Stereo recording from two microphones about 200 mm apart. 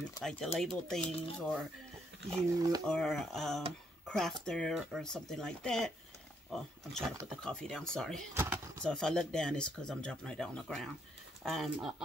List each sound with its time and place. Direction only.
0.2 s speech: centre (ahead or behind)
2.3 s speech: 20° right (ahead or behind)
2.9 s speech: centre (ahead or behind)
8.4 s a sound: 10° right (ahead or behind)
8.8 s speech: 5° left (ahead or behind)